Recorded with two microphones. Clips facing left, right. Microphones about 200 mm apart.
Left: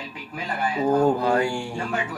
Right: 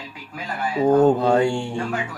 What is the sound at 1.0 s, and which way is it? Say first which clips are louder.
Speech: right 4 dB; 25° right (ahead or behind).